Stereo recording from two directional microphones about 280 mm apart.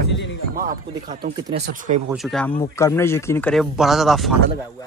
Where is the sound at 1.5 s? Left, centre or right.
Right.